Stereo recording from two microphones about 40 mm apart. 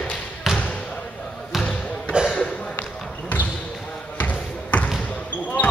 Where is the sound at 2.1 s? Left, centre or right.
Right.